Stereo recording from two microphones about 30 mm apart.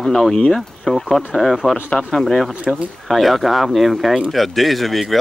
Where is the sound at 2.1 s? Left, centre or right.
Centre.